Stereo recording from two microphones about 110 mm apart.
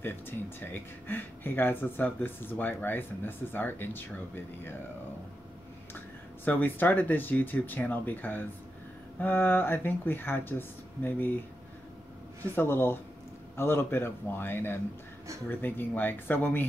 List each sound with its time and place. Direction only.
0.0 s speech: 20° left (ahead or behind)
5.9 s speech: 20° left (ahead or behind)
12.5 s speech: 20° left (ahead or behind)